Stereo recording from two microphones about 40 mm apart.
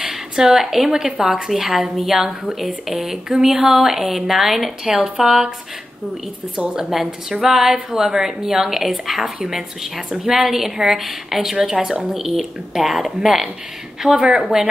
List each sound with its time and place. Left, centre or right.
0.5 s speech: centre
0.9 s a woman's voice: centre
4.8 s a woman's voice: centre
6.5 s a woman's voice: centre
14.0 s a woman's voice: right
14.5 s a woman's voice: centre